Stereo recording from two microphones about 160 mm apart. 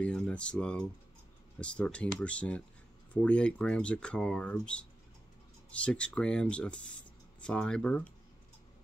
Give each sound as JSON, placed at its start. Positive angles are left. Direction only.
{"t": 0.0, "sound": "speech", "side_deg": 5}